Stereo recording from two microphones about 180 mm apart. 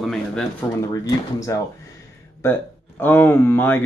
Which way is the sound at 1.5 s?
20° left (ahead or behind).